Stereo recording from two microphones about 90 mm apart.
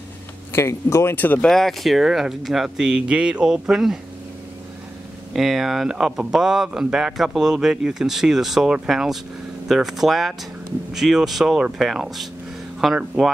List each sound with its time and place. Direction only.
0.5 s speech: 30° left (ahead or behind)
1.1 s speech: 20° left (ahead or behind)
1.5 s speech: 5° left (ahead or behind)
5.3 s speech: 5° right (ahead or behind)